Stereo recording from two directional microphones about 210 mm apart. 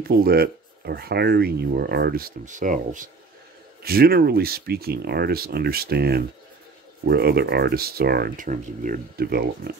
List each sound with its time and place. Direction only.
0.1 s speech: 45° right (ahead or behind)